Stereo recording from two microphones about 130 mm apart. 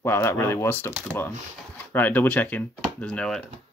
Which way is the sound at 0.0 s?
20° left (ahead or behind).